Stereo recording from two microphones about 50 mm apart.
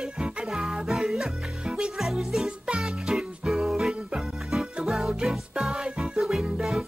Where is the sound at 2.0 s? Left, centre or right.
Centre.